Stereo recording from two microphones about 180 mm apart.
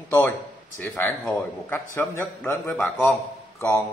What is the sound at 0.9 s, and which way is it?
Speech, 10° left (ahead or behind).